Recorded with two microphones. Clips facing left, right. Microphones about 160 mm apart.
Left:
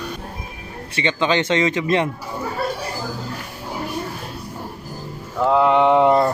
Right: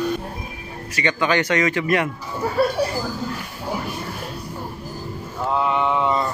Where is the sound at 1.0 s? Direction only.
20° left (ahead or behind).